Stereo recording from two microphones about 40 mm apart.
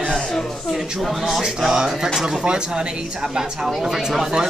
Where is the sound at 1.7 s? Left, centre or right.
Centre.